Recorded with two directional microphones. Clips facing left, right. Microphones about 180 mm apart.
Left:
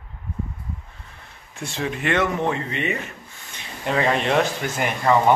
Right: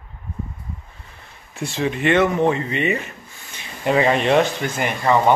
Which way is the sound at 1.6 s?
Centre (ahead or behind).